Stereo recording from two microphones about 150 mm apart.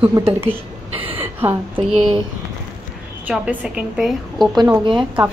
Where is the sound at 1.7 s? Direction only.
40° right (ahead or behind).